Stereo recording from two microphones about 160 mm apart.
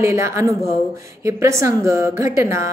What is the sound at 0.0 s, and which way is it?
A woman's voice, 20° right (ahead or behind).